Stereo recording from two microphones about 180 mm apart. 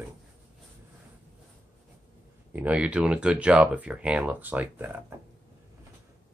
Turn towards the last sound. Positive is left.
turn(degrees=-10)  # may be behind; listen again after turning